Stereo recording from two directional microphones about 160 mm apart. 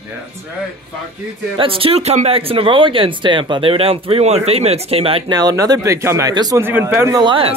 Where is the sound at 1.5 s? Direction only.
35° right (ahead or behind).